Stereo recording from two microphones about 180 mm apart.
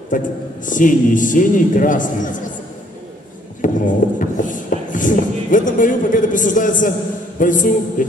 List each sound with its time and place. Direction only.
0.1 s a man's voice: 45° left (ahead or behind)
3.6 s a man's voice: 45° left (ahead or behind)